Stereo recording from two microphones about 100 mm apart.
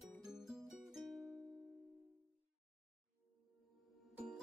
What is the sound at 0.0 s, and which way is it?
Music, 5° right (ahead or behind).